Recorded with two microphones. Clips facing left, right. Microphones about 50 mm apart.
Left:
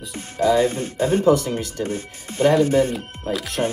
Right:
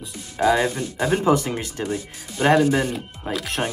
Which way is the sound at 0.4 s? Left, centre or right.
Right.